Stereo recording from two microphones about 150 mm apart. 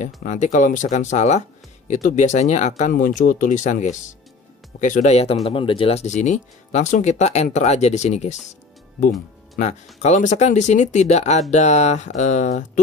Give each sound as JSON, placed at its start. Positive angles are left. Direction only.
{"t": 0.0, "sound": "speech", "side_deg": 55}
{"t": 2.8, "sound": "speech", "side_deg": 65}
{"t": 10.0, "sound": "speech", "side_deg": 50}